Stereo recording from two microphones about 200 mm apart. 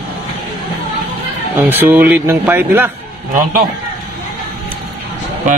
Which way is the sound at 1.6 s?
10° right (ahead or behind).